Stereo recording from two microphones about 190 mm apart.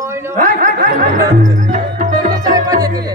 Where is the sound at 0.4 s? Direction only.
45° right (ahead or behind).